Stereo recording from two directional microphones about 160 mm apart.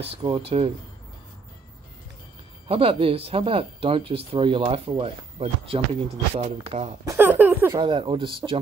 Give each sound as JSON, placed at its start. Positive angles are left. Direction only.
{"t": 0.0, "sound": "speech", "side_deg": -35}
{"t": 2.7, "sound": "speech", "side_deg": -35}
{"t": 7.1, "sound": "a sound", "side_deg": -10}
{"t": 7.7, "sound": "speech", "side_deg": -30}